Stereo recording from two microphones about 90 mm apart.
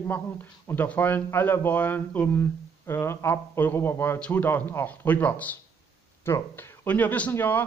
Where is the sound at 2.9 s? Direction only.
30° left (ahead or behind).